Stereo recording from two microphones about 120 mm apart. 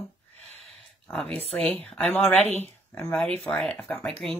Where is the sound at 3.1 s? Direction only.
5° left (ahead or behind).